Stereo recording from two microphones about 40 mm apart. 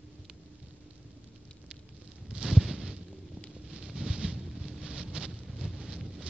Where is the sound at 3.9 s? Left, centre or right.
Centre.